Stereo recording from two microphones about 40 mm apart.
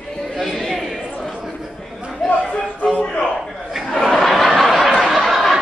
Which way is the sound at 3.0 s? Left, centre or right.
Left.